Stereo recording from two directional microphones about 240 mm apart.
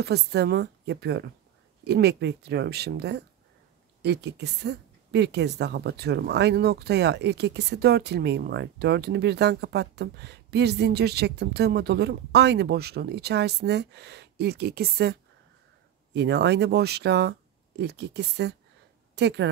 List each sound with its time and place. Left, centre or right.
0.0 s a woman's voice: right